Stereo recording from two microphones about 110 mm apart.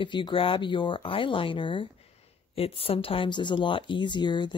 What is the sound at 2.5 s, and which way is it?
Speech, 60° left (ahead or behind).